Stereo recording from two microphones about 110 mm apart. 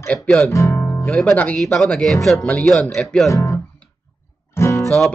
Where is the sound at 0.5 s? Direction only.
30° left (ahead or behind).